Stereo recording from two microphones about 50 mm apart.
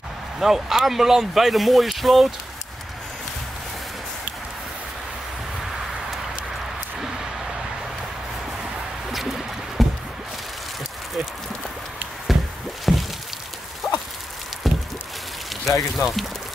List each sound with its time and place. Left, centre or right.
0.4 s speech: centre
9.1 s music: centre
12.3 s a sound: centre
15.6 s speech: centre